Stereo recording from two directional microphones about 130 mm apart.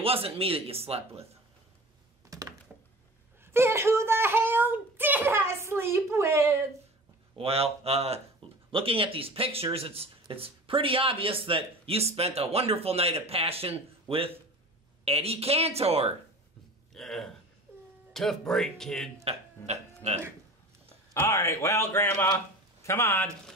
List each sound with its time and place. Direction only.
0.0 s speech: 45° right (ahead or behind)
2.2 s a sound: 25° right (ahead or behind)
3.5 s a sound: 20° right (ahead or behind)
7.3 s speech: 50° right (ahead or behind)
16.9 s speech: 5° left (ahead or behind)
19.2 s speech: 55° right (ahead or behind)
21.1 s a man's voice: 25° left (ahead or behind)